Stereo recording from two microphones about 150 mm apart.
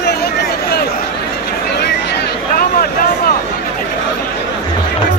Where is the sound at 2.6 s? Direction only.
75° left (ahead or behind).